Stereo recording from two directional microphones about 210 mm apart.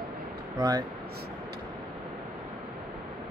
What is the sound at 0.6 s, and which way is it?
Speech, 20° right (ahead or behind).